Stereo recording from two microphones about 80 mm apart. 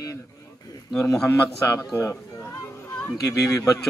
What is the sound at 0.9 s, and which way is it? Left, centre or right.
Speech, left.